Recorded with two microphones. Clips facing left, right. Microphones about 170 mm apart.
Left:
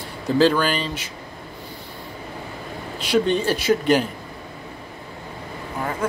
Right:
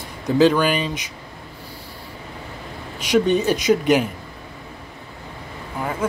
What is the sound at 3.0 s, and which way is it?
Speech, 10° right (ahead or behind).